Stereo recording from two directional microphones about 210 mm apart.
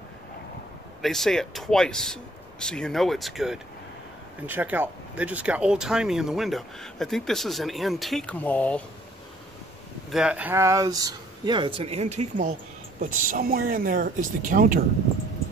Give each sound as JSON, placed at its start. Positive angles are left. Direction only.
{"t": 1.0, "sound": "speech", "side_deg": 0}
{"t": 10.1, "sound": "speech", "side_deg": -5}
{"t": 13.3, "sound": "speech", "side_deg": -45}